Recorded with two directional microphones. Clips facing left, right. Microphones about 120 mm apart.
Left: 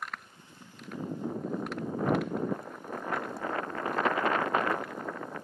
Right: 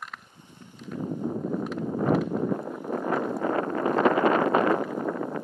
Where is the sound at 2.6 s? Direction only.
55° right (ahead or behind).